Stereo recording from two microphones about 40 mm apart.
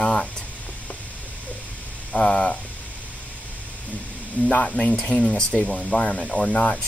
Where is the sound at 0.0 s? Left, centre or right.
Centre.